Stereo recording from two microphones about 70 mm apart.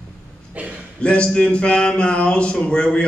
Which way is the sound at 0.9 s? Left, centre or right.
Centre.